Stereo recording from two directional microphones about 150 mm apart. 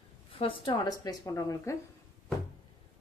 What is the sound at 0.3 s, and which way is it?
Speech, 40° left (ahead or behind).